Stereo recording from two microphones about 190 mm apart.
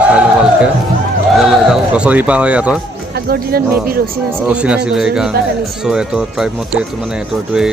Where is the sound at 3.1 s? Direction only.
55° right (ahead or behind).